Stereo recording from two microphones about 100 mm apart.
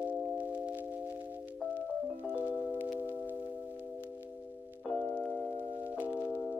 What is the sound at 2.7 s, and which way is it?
Singing bowl, 20° right (ahead or behind).